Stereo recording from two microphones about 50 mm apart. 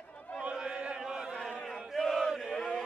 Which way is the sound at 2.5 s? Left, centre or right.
Centre.